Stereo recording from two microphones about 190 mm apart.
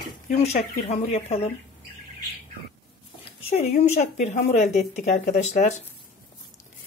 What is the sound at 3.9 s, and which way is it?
A woman's voice, 40° left (ahead or behind).